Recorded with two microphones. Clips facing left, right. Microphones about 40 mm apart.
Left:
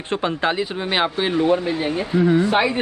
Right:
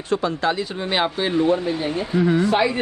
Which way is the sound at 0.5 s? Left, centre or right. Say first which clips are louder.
Left 1 dB; left.